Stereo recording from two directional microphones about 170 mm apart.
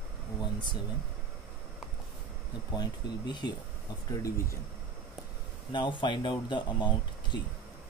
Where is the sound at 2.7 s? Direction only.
25° left (ahead or behind).